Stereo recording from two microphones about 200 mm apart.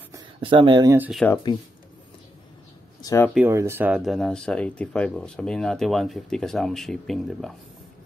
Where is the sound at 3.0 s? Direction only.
15° left (ahead or behind).